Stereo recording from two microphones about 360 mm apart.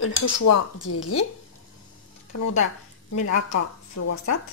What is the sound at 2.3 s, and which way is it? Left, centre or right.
Speech, left.